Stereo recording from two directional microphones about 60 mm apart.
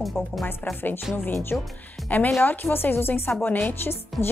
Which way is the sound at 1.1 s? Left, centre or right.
Left.